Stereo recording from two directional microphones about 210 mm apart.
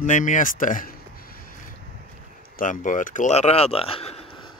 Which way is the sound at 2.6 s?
40° left (ahead or behind).